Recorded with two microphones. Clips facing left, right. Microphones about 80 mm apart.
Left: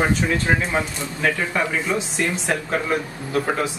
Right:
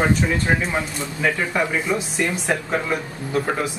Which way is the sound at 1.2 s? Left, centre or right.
Centre.